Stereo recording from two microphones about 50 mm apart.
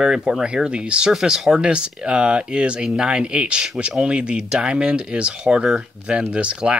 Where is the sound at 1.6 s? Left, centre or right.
Right.